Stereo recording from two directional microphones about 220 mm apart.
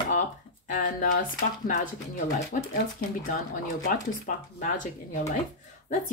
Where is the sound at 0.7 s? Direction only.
40° left (ahead or behind).